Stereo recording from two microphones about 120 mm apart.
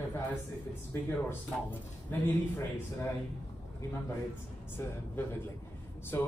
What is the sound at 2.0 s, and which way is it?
Speech, 20° left (ahead or behind).